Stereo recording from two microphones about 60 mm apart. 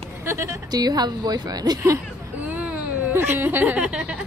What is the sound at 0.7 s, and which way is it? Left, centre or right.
A woman's voice, right.